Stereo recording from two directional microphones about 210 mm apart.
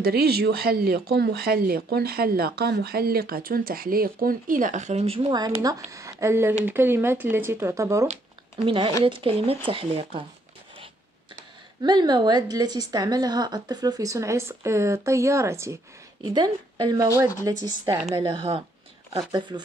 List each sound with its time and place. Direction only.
0.0 s a woman's voice: 50° right (ahead or behind); by 8.1 s 15° right (ahead or behind)
8.6 s speech: 25° right (ahead or behind)
11.8 s a woman's voice: 20° right (ahead or behind)